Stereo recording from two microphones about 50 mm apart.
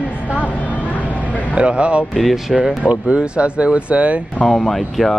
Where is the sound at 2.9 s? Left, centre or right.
Right.